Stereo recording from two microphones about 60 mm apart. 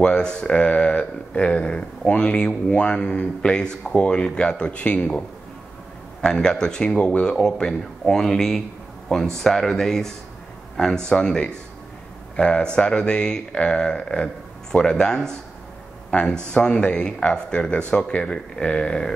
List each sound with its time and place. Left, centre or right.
0.0 s speech: centre
6.2 s a man's voice: centre